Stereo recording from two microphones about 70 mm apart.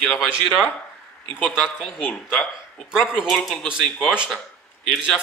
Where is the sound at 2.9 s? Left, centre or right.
Centre.